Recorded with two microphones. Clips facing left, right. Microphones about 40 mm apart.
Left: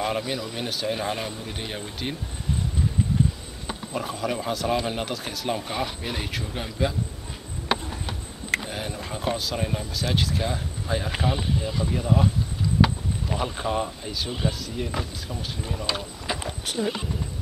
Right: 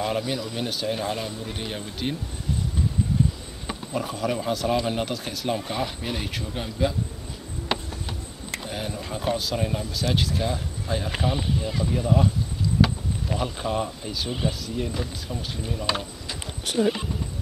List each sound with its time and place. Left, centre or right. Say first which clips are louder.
0.0 s speech: even; centre
1.0 s speech: even; centre
1.4 s speech: right 1 dB; centre
3.9 s speech: right 1 dB; centre
8.6 s speech: right 1 dB; centre
13.3 s speech: even; centre
16.3 s a sound: left 7 dB; left
16.7 s speech: right 5 dB; centre